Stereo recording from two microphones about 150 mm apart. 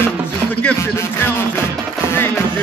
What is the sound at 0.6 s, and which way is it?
Music, 15° left (ahead or behind).